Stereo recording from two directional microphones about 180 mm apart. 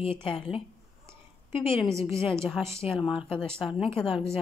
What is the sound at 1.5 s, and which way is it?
Speech, 30° left (ahead or behind).